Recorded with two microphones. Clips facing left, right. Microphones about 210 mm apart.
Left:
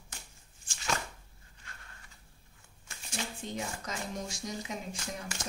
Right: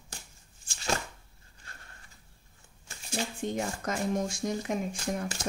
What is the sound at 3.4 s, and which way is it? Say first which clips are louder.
Speech: right 6 dB; 50° right (ahead or behind).